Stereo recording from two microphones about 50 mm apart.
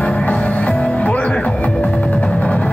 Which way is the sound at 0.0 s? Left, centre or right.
Left.